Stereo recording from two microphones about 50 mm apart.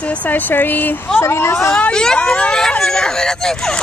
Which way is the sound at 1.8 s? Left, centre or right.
Centre.